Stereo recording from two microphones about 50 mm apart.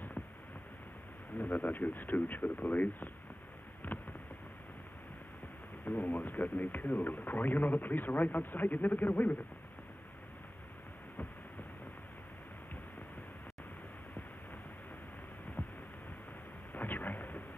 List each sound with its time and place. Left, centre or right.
1.4 s speech: left
3.9 s a sound: left
5.9 s speech: left
15.6 s hum: left
16.7 s thunder: left